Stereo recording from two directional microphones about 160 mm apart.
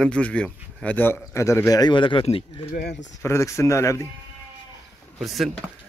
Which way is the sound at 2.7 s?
85° left.